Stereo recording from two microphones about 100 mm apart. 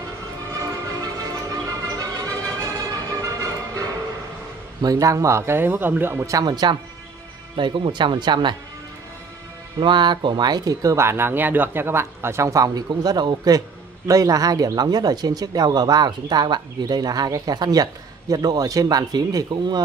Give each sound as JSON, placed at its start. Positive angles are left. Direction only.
{"t": 0.6, "sound": "music", "side_deg": -35}
{"t": 4.8, "sound": "speech", "side_deg": -35}
{"t": 6.4, "sound": "speech", "side_deg": -45}
{"t": 9.8, "sound": "speech", "side_deg": -50}